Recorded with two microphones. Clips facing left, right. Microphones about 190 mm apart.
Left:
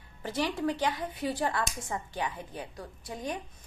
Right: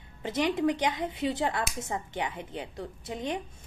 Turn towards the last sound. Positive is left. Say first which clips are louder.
# right 3 dB
turn(degrees=-20)  # may be behind; listen again after turning